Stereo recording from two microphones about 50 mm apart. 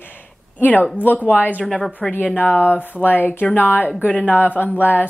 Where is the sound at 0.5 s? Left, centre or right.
Left.